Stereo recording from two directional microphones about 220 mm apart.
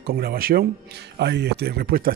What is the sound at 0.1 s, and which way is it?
Speech, 45° right (ahead or behind).